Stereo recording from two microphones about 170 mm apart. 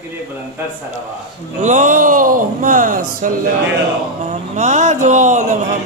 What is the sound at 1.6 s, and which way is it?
Speech, 45° right (ahead or behind).